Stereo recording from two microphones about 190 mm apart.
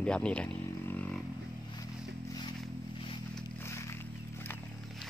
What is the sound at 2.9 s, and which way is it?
Vehicle, 25° left (ahead or behind).